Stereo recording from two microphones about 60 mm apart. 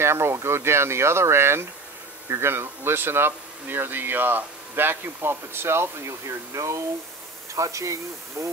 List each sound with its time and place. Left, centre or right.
0.0 s speech: right
7.5 s speech: right